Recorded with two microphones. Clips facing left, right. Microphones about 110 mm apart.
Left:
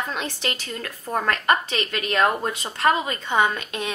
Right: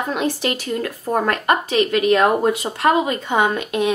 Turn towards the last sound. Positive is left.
turn(degrees=-20)  # may be behind; listen again after turning